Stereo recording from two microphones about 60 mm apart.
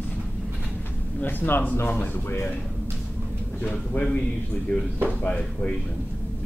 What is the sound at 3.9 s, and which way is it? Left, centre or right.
Speech, left.